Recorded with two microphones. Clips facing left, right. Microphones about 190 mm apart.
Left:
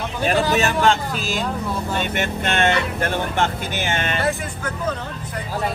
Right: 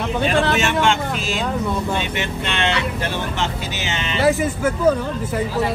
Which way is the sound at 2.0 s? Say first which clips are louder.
Left 1 dB; 50° left (ahead or behind).